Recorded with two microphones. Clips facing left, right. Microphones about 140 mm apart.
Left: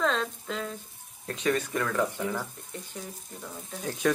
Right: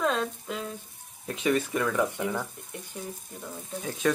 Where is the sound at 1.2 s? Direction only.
10° right (ahead or behind).